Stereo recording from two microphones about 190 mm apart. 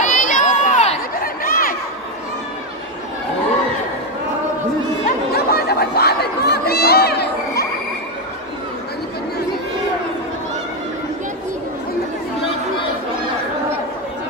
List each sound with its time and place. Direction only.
0.0 s chatter: 40° left (ahead or behind)
5.0 s chatter: 55° left (ahead or behind)